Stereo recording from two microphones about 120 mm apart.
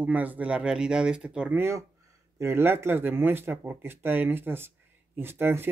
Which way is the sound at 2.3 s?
20° right (ahead or behind).